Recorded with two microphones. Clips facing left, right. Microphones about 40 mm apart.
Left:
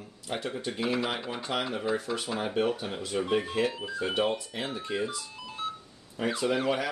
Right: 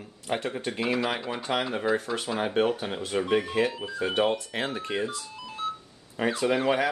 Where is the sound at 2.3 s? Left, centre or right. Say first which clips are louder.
Right 4 dB; right.